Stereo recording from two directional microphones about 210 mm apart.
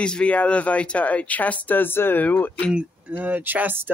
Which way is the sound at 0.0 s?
5° left (ahead or behind).